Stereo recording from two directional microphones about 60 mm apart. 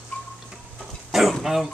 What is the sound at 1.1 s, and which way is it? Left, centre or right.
Speech, centre.